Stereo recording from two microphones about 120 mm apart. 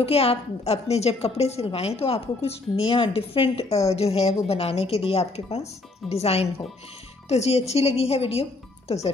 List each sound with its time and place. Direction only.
0.0 s a woman's voice: 55° left (ahead or behind)